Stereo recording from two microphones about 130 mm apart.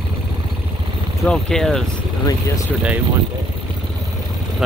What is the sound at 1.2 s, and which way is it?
Speech, 5° left (ahead or behind).